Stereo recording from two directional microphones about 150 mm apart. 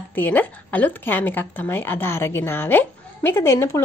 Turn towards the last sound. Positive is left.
turn(degrees=20)  # may be behind; listen again after turning